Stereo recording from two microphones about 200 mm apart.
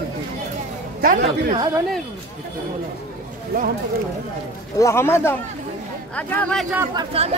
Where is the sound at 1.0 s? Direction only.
45° right (ahead or behind).